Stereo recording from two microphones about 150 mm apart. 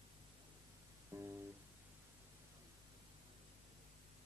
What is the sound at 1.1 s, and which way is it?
Music, 20° right (ahead or behind).